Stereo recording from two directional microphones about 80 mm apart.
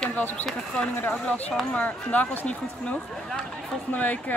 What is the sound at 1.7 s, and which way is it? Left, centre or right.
Speech, centre.